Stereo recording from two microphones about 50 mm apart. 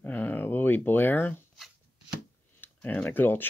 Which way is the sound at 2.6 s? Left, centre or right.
Left.